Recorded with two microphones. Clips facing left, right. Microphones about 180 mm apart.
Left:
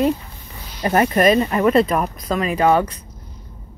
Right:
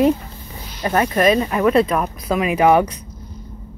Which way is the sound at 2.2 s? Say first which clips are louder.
Right 3 dB; 10° right (ahead or behind).